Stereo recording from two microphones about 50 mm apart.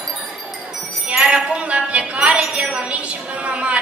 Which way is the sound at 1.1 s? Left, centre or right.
Right.